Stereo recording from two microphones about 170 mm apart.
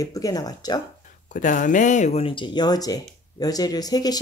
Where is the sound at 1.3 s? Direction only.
50° left (ahead or behind).